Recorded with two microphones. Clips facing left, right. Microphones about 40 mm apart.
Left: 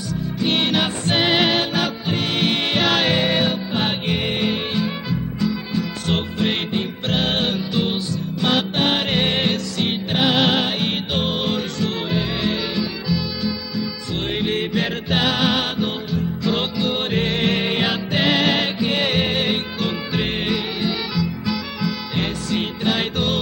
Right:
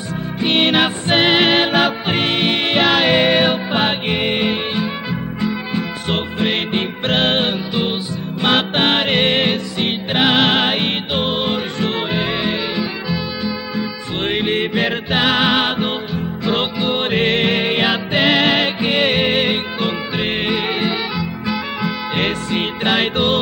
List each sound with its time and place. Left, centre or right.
0.4 s music: right
2.3 s music: right
3.2 s music: right
6.7 s music: right
8.4 s music: right